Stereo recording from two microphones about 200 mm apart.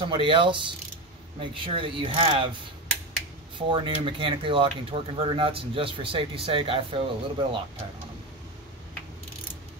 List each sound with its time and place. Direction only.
0.1 s speech: 25° right (ahead or behind)
3.5 s speech: 25° right (ahead or behind)